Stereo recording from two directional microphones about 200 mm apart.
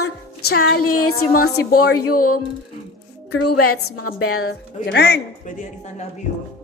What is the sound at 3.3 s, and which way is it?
A woman's voice, 90° left.